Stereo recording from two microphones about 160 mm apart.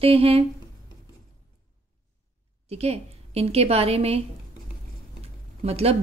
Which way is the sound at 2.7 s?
40° right (ahead or behind).